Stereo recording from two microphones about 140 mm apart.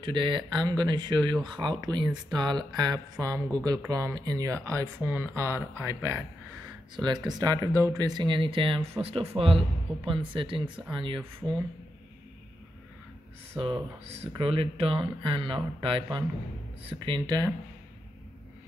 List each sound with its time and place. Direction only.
0.0 s speech: 35° right (ahead or behind)
7.2 s speech: 30° right (ahead or behind)
13.6 s speech: 40° right (ahead or behind)